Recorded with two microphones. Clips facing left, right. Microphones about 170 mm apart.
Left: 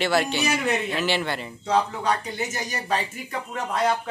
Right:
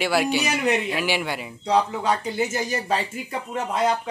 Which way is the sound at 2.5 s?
30° right (ahead or behind).